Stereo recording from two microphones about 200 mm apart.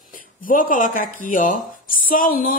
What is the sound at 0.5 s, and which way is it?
A woman's voice, 45° left (ahead or behind).